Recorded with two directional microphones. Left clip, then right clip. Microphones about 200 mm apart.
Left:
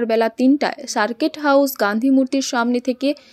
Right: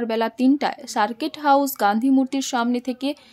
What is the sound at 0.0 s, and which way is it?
A woman's voice, 10° left (ahead or behind).